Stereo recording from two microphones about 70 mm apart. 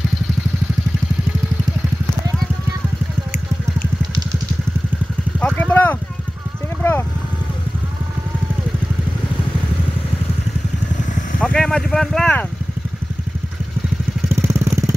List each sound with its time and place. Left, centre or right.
5.4 s vehicle: centre
6.8 s a sound: left
11.4 s vehicle: centre
14.3 s vehicle: right